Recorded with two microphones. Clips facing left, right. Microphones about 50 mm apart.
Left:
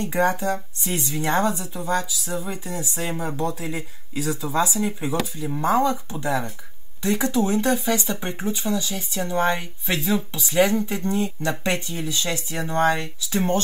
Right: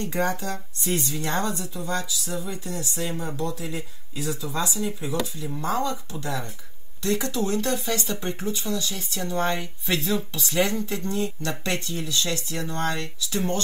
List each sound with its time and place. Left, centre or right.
0.2 s speech: centre
3.5 s speech: left
5.4 s speech: left